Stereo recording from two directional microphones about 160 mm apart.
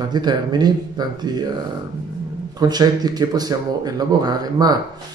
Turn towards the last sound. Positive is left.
turn(degrees=-25)  # may be behind; listen again after turning